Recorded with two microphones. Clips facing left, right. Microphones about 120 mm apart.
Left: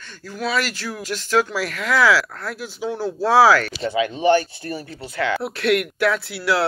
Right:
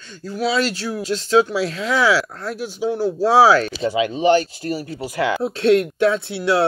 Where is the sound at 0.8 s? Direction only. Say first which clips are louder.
Right 5 dB; 20° right (ahead or behind).